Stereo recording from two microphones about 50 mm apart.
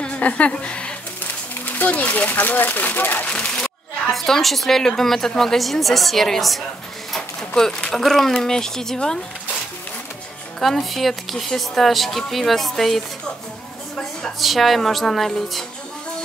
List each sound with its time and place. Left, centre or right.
0.0 s a woman's voice: left
1.8 s speech: left
3.3 s a sound: left
4.1 s a woman's voice: centre
10.6 s a woman's voice: centre
14.4 s a woman's voice: centre